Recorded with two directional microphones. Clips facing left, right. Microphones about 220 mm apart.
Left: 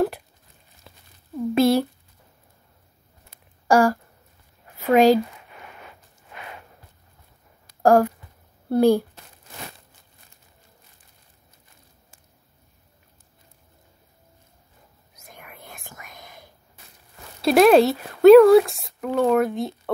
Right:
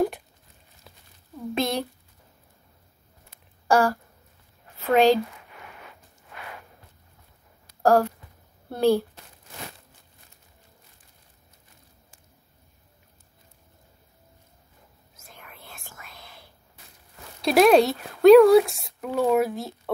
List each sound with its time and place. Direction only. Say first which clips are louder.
0.9 s a sound: left 2 dB; centre (ahead or behind)
1.5 s speech: left 8 dB; 5° left (ahead or behind)
3.6 s a sound: left 3 dB; 10° left (ahead or behind)
4.7 s a woman's voice: left 3 dB; 10° left (ahead or behind)
7.8 s speech: left 3 dB; 10° left (ahead or behind)
15.1 s whispering: left 3 dB; 15° left (ahead or behind)
17.4 s speech: left 3 dB; centre (ahead or behind)